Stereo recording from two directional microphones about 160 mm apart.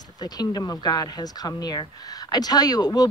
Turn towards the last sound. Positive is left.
turn(degrees=25)  # may be behind; listen again after turning